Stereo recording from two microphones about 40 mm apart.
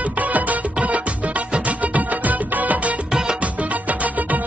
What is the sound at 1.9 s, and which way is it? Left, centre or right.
Music, right.